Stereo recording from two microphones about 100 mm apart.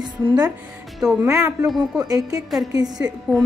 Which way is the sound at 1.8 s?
40° right (ahead or behind).